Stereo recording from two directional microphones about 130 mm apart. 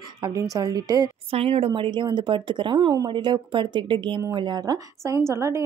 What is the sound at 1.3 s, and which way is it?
Speech, 50° right (ahead or behind).